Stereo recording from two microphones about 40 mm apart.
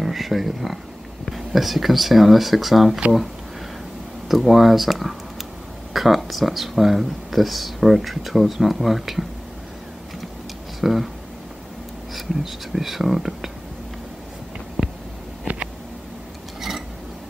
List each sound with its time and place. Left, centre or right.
0.0 s speech: centre
4.3 s speech: centre
10.8 s speech: centre
12.2 s speech: centre
14.8 s a sound: centre
15.5 s a sound: right